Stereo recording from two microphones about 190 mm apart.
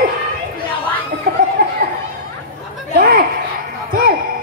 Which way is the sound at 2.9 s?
50° right (ahead or behind).